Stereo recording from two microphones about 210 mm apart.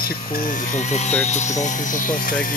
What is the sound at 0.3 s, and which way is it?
Speech, 40° left (ahead or behind).